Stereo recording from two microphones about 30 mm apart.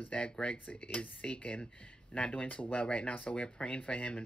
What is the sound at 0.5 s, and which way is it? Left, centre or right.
Speech, left.